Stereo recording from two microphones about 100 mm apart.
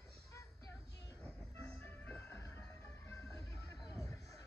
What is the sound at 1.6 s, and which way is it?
Music, 20° left (ahead or behind).